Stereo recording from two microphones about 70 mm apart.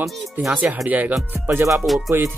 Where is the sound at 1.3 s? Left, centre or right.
Right.